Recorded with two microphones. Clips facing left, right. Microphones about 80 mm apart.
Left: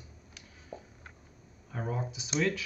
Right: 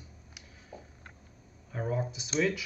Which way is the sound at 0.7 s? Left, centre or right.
Left.